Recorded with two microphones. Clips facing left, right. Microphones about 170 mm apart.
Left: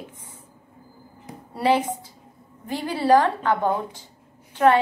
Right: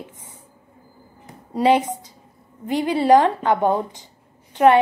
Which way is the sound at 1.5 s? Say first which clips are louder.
Right 4 dB; 20° right (ahead or behind).